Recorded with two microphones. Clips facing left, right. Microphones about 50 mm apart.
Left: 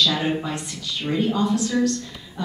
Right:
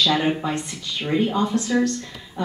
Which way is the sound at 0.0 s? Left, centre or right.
Right.